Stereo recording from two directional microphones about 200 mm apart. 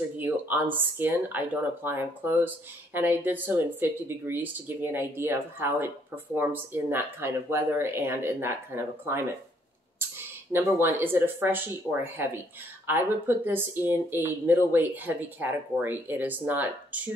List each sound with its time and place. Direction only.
0.2 s speech: 10° right (ahead or behind)
10.5 s speech: 10° right (ahead or behind)